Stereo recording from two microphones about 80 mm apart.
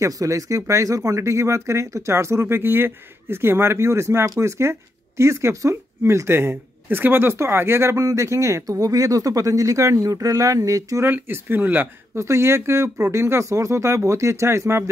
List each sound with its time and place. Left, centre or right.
0.0 s speech: right
11.1 s speech: right
12.2 s speech: right